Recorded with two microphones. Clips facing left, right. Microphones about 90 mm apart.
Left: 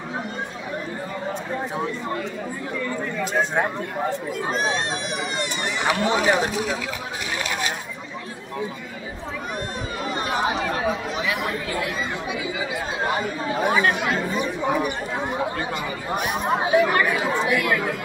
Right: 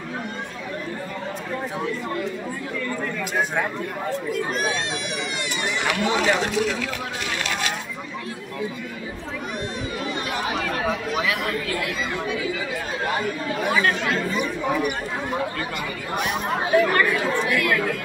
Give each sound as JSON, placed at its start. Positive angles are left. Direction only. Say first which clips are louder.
{"t": 4.3, "sound": "speech", "louder": "even", "side_deg": 30}
{"t": 5.9, "sound": "speech", "louder": "left 2 dB", "side_deg": 30}
{"t": 6.4, "sound": "speech", "louder": "right 1 dB", "side_deg": 20}
{"t": 10.3, "sound": "chatter", "louder": "left 4 dB", "side_deg": 25}
{"t": 11.2, "sound": "speech", "louder": "right 1 dB", "side_deg": 20}
{"t": 16.4, "sound": "speech", "louder": "left 1 dB", "side_deg": 15}